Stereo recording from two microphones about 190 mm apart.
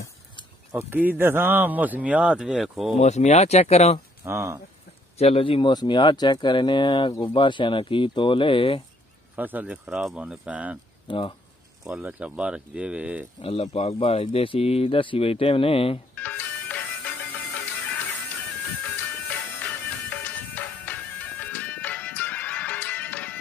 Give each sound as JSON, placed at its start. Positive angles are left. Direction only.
{"t": 0.7, "sound": "speech", "side_deg": -10}
{"t": 3.0, "sound": "speech", "side_deg": 35}
{"t": 4.2, "sound": "speech", "side_deg": -15}
{"t": 5.1, "sound": "speech", "side_deg": 30}
{"t": 9.3, "sound": "speech", "side_deg": -10}
{"t": 11.1, "sound": "speech", "side_deg": 25}
{"t": 11.8, "sound": "speech", "side_deg": -5}
{"t": 13.4, "sound": "speech", "side_deg": 30}
{"t": 16.2, "sound": "music", "side_deg": 10}
{"t": 19.2, "sound": "music", "side_deg": 10}